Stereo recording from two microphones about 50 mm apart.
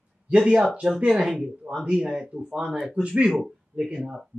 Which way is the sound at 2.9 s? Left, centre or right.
Centre.